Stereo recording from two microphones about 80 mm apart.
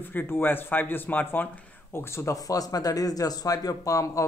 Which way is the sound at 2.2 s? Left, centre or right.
Left.